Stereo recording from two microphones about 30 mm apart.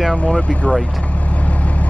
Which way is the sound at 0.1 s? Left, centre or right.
Left.